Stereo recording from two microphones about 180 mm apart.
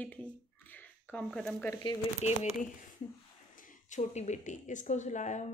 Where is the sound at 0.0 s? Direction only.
10° left (ahead or behind).